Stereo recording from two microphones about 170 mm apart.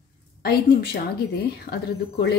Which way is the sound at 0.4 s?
65° left (ahead or behind).